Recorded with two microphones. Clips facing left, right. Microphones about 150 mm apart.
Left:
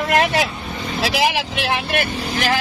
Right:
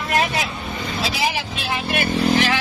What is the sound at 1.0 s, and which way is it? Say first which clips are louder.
Speech: left 5 dB; 85° left.